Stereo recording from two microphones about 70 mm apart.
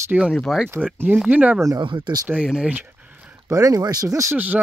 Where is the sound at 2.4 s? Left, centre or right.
Centre.